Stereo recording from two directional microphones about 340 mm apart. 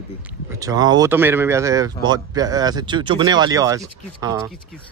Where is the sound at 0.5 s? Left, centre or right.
Centre.